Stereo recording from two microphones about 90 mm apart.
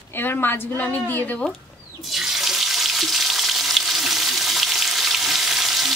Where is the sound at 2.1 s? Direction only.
5° right (ahead or behind).